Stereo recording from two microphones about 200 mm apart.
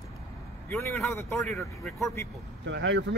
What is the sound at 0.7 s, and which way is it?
Speech, 15° left (ahead or behind).